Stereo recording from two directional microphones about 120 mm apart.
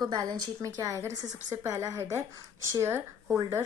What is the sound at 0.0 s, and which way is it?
A woman's voice, 35° right (ahead or behind).